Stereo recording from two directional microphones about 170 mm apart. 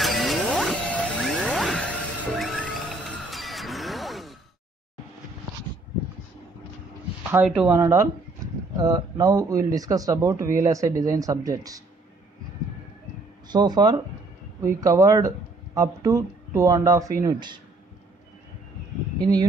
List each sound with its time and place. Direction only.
0.0 s music: centre (ahead or behind)
7.2 s speech: 10° right (ahead or behind)
7.7 s speech: 15° right (ahead or behind)
13.5 s speech: 25° right (ahead or behind)